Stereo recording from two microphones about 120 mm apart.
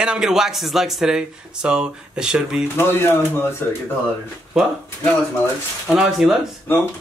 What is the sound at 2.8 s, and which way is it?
Speech, 20° left (ahead or behind).